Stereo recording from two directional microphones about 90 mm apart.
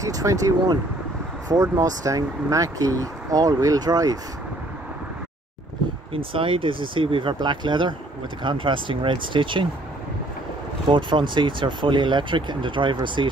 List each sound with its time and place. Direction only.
0.0 s speech: 40° right (ahead or behind)
6.1 s speech: 80° right
10.9 s speech: 65° right (ahead or behind)